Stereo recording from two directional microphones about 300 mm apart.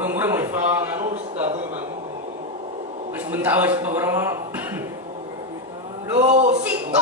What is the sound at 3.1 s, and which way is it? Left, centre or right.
A man's voice, centre.